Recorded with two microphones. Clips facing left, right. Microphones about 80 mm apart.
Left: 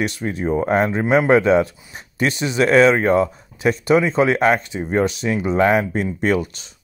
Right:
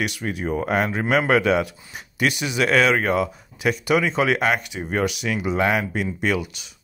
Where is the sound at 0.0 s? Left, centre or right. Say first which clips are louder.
Left 4 dB; left.